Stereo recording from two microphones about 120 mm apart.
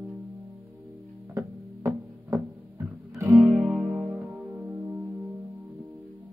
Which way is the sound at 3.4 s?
Centre (ahead or behind).